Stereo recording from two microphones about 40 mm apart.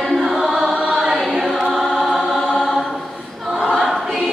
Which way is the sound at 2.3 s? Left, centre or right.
Centre.